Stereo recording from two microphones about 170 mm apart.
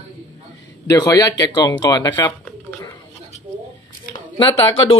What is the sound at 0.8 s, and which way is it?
Speech, 20° left (ahead or behind).